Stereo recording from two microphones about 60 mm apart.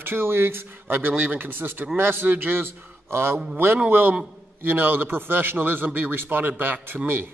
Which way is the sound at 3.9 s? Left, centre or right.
Right.